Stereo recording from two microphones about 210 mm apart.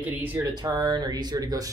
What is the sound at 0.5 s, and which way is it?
A man's voice, 20° right (ahead or behind).